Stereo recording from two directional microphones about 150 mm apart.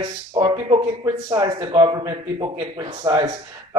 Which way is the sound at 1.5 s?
35° right (ahead or behind).